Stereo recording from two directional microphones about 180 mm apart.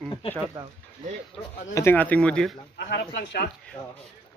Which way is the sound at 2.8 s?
65° left (ahead or behind).